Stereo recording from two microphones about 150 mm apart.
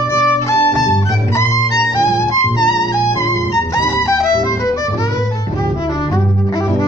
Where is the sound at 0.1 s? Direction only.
20° left (ahead or behind).